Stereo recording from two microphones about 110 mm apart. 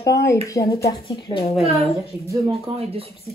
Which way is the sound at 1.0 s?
55° left (ahead or behind).